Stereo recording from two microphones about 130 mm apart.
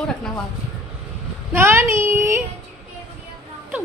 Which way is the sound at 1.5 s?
15° right (ahead or behind).